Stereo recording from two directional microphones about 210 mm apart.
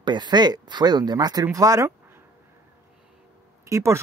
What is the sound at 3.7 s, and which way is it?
Speech, 15° right (ahead or behind).